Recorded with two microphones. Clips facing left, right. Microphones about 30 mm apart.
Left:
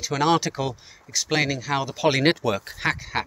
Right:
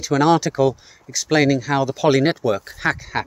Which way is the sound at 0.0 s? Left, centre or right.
Centre.